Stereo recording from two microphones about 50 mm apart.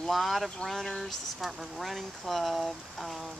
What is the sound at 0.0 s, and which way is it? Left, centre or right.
Speech, centre.